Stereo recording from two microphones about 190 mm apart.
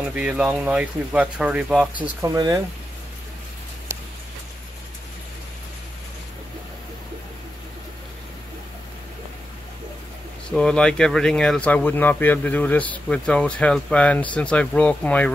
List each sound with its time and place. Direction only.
0.1 s speech: 5° right (ahead or behind)
2.2 s speech: 20° right (ahead or behind)
10.5 s speech: 5° left (ahead or behind)